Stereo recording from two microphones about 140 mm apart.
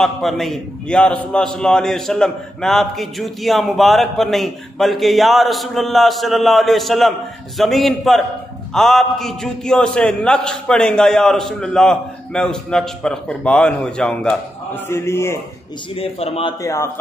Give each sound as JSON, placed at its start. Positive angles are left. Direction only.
{"t": 0.0, "sound": "a man's voice", "side_deg": 0}
{"t": 14.7, "sound": "a man's voice", "side_deg": 20}
{"t": 15.9, "sound": "a man's voice", "side_deg": 45}
{"t": 16.6, "sound": "a man's voice", "side_deg": 20}